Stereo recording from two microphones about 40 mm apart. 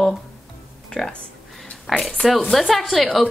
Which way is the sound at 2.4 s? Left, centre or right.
Centre.